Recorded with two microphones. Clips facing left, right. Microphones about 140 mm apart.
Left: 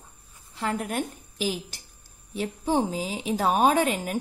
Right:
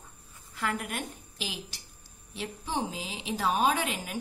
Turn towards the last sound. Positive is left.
turn(degrees=45)  # may be behind; listen again after turning